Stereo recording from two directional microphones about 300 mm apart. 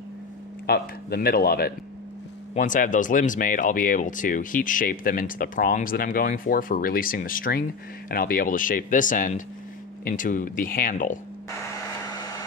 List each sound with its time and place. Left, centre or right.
0.7 s speech: left